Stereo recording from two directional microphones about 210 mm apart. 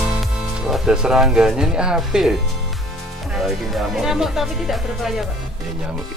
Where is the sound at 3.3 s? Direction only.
Centre (ahead or behind).